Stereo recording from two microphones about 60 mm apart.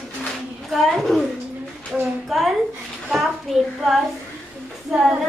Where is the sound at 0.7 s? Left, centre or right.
Centre.